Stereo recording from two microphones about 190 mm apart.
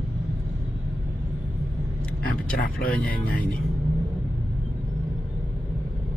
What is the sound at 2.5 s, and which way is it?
Speech, 50° left (ahead or behind).